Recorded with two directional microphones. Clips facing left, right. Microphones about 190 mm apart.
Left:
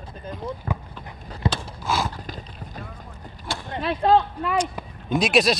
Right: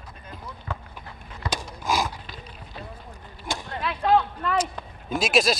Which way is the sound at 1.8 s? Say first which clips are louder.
Even; 15° right (ahead or behind).